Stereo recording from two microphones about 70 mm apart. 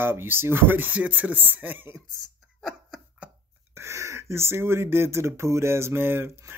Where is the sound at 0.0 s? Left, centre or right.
Right.